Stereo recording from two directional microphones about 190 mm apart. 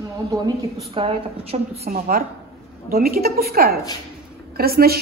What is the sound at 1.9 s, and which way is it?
A woman's voice, 50° right (ahead or behind).